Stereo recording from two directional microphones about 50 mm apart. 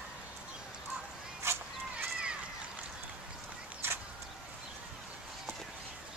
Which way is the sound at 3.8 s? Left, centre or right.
Right.